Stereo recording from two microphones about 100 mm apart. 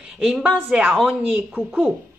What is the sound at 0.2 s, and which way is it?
Speech, 10° right (ahead or behind).